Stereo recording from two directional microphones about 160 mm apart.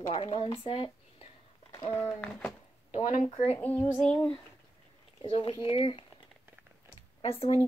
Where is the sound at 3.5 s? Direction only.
10° left (ahead or behind).